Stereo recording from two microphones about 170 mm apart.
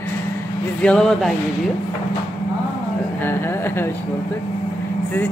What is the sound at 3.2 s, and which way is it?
Speech, 15° left (ahead or behind).